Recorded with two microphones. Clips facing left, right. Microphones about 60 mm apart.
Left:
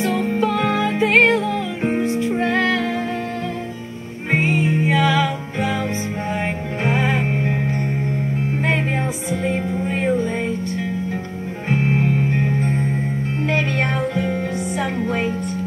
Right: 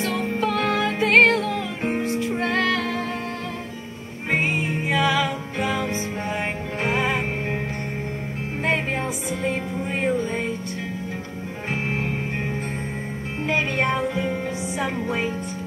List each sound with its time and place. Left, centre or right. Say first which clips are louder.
0.2 s music: left 4 dB; centre
1.8 s music: left 6 dB; centre
2.0 s music: left 4 dB; left
4.3 s music: left 4 dB; left
11.7 s music: left 7 dB; centre
13.5 s music: even; centre